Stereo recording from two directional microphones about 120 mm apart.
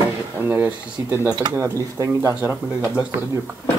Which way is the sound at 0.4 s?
15° right (ahead or behind).